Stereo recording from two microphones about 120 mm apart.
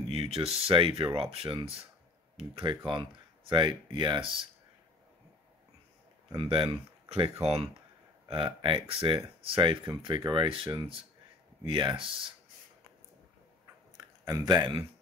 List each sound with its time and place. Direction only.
0.1 s speech: 55° right (ahead or behind)
6.3 s speech: 45° right (ahead or behind)
13.9 s a sound: 35° right (ahead or behind)